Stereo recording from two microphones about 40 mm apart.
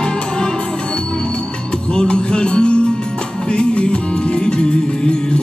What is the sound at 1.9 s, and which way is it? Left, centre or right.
Music, left.